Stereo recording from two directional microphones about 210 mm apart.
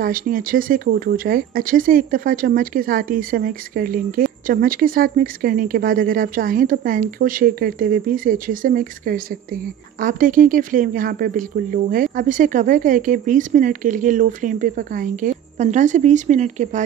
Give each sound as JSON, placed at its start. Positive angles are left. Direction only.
{"t": 0.0, "sound": "speech", "side_deg": -45}